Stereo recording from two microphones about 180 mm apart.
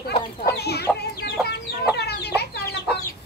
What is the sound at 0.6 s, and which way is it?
Chicken, 65° left (ahead or behind).